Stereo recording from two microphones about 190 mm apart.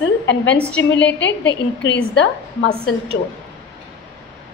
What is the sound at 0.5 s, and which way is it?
Speech, 5° left (ahead or behind).